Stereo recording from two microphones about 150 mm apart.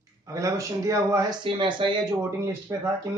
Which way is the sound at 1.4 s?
35° right (ahead or behind).